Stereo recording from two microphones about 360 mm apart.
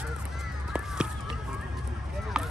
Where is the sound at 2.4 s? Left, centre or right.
Centre.